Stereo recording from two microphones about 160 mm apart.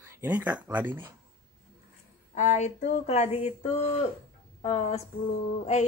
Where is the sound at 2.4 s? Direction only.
45° left (ahead or behind).